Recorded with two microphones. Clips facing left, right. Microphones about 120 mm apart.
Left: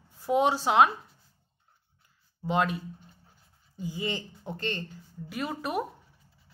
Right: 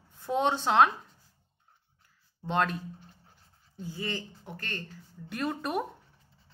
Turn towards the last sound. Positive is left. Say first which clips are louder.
# even
turn(degrees=5)  # may be behind; listen again after turning